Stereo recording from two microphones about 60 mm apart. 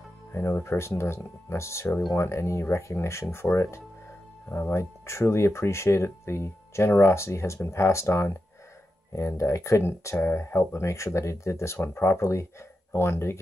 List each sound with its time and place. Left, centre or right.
0.3 s speech: left
4.7 s speech: left